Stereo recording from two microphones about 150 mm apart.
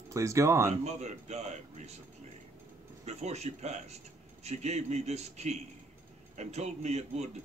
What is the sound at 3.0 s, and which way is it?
A man's voice, 45° right (ahead or behind).